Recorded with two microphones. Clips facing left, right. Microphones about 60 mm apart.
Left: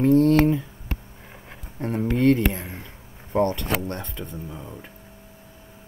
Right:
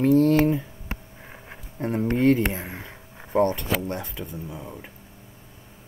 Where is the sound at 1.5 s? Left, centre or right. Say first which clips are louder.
Right 1 dB; centre.